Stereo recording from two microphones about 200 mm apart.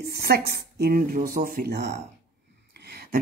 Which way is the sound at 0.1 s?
50° right (ahead or behind).